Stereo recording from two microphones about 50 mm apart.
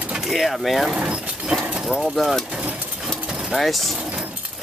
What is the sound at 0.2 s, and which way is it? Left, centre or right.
Speech, centre.